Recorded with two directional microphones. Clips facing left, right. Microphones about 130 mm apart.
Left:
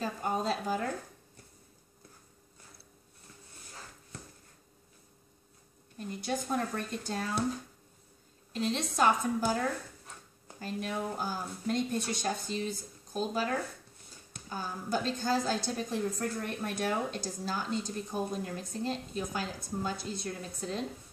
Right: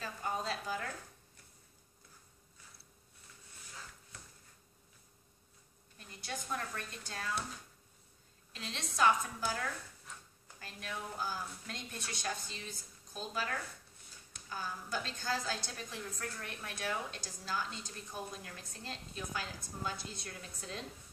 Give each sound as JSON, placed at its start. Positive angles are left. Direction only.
{"t": 0.0, "sound": "a sound", "side_deg": 30}
{"t": 5.9, "sound": "speech", "side_deg": 40}
{"t": 8.5, "sound": "a woman's voice", "side_deg": 35}
{"t": 13.3, "sound": "a woman's voice", "side_deg": 30}